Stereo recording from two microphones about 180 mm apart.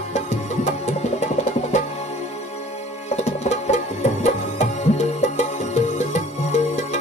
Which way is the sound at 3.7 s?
40° left (ahead or behind).